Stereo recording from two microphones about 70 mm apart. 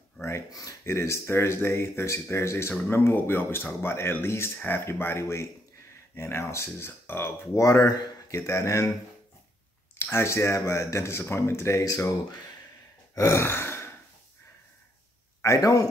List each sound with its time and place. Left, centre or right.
0.5 s speech: left
0.8 s speech: left
7.6 s speech: left
9.9 s speech: left
11.8 s speech: left
13.1 s a sound: left
13.5 s speech: left
15.4 s speech: left